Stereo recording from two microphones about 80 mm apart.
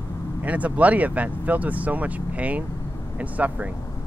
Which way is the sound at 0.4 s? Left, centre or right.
Centre.